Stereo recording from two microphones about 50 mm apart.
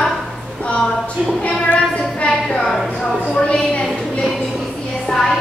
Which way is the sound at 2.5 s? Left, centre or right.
Centre.